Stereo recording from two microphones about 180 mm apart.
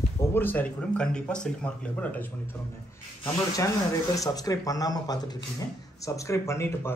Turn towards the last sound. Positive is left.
turn(degrees=15)  # may be behind; listen again after turning